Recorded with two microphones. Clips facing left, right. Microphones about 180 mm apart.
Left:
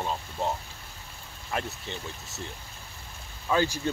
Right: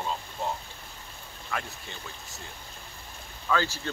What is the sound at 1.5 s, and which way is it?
Speech, 25° left (ahead or behind).